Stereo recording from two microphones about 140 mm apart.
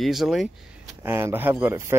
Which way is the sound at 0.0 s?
Centre (ahead or behind).